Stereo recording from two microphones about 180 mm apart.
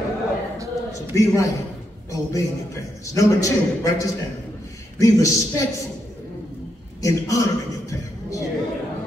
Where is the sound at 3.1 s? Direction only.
20° left (ahead or behind).